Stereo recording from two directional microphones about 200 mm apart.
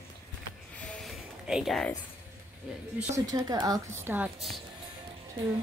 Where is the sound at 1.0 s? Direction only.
Centre (ahead or behind).